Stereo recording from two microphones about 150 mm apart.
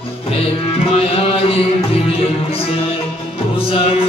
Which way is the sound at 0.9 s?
40° left (ahead or behind).